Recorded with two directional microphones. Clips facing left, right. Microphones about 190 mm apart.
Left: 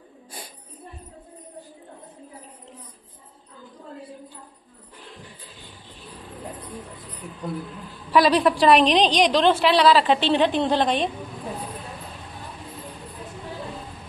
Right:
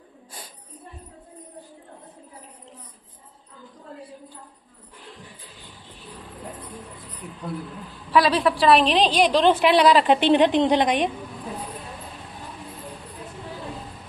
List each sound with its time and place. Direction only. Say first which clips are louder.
8.1 s a woman's voice: left 2 dB; centre (ahead or behind)